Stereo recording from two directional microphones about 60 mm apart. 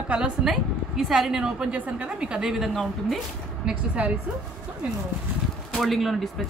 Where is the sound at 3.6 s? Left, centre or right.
Centre.